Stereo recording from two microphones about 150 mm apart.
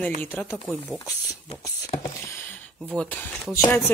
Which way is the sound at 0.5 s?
Centre (ahead or behind).